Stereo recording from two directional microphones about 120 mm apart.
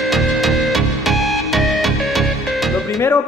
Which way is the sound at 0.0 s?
Centre (ahead or behind).